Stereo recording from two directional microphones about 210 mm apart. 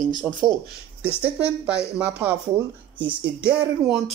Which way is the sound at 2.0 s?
5° right (ahead or behind).